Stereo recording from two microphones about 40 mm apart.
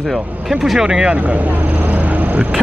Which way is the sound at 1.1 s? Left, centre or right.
Right.